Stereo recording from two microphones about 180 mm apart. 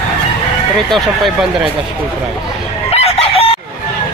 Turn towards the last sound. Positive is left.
turn(degrees=35)  # may be behind; listen again after turning